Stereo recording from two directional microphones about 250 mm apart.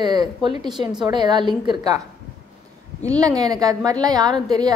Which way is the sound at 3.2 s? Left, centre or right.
Centre.